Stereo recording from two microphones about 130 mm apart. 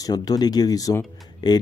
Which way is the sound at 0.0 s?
30° left (ahead or behind).